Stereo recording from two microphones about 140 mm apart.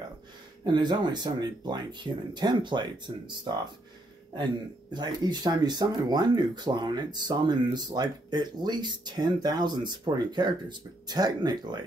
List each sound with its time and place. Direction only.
0.7 s speech: 30° right (ahead or behind)
4.9 s speech: 30° right (ahead or behind)